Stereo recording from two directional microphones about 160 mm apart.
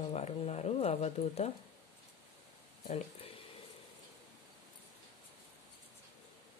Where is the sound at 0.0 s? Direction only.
40° left (ahead or behind).